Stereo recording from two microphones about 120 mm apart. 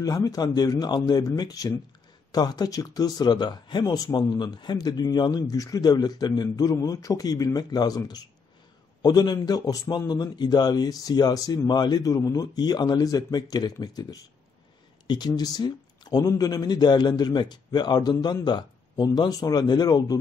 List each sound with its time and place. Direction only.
0.0 s speech: 30° left (ahead or behind)
15.0 s speech: 35° left (ahead or behind)